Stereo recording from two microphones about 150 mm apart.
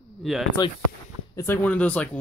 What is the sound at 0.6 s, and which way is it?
Speech, 25° left (ahead or behind).